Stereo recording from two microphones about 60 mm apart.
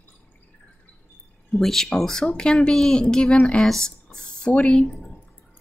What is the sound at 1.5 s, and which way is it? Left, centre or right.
Speech, centre.